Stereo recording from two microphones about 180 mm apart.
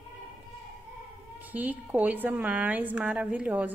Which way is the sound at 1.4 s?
10° right (ahead or behind).